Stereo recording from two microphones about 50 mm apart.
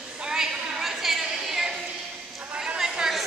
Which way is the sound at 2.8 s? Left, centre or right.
Centre.